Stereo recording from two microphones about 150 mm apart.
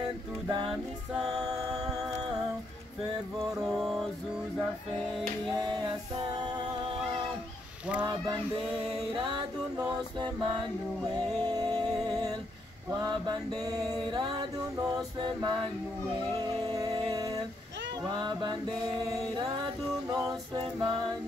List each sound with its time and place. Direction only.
0.5 s music: 30° right (ahead or behind)
1.7 s music: 5° right (ahead or behind)
3.6 s music: centre (ahead or behind)
5.6 s music: 30° right (ahead or behind)
8.0 s music: 30° right (ahead or behind)
9.1 s a sound: 35° right (ahead or behind)
13.7 s mantra: 25° right (ahead or behind)
15.4 s music: 30° right (ahead or behind)
20.1 s a capella: 25° right (ahead or behind)